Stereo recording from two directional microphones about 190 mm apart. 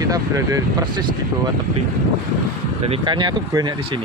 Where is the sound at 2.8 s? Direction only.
25° right (ahead or behind).